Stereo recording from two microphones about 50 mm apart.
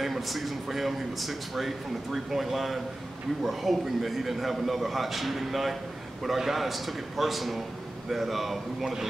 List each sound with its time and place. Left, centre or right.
0.0 s speech: centre